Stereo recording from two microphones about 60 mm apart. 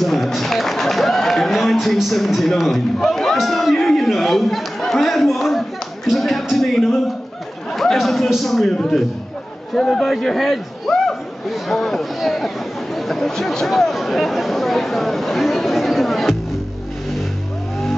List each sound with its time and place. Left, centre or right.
0.0 s a man's voice: centre
3.3 s chatter: centre
7.7 s a sound: centre
8.7 s speech: centre
9.8 s speech: centre